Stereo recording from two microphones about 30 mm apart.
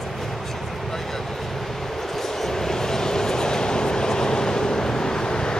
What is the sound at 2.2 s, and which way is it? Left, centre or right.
Vehicle, centre.